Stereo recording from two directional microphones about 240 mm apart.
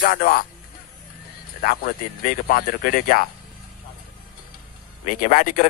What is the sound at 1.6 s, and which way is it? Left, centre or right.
Speech, left.